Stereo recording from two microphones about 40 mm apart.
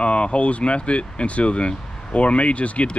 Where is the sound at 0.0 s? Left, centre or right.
Left.